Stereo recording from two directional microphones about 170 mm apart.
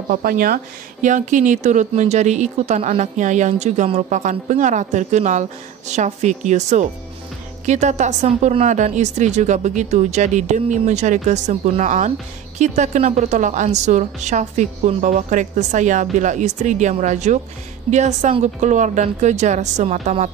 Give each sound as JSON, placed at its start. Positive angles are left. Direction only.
{"t": 0.1, "sound": "speech", "side_deg": -55}
{"t": 1.0, "sound": "speech", "side_deg": -45}